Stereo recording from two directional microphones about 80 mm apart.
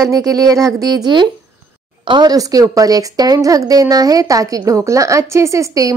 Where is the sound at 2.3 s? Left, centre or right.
Right.